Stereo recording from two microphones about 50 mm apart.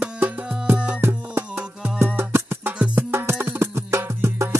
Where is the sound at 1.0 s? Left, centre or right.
Right.